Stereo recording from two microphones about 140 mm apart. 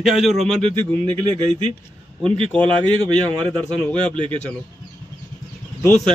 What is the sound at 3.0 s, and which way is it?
A man's voice, 30° right (ahead or behind).